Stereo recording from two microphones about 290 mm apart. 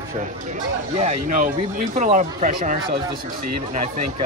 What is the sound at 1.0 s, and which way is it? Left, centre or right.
Speech, right.